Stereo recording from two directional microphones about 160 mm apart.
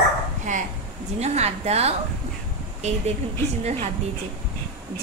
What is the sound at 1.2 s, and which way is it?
Speech, 45° right (ahead or behind).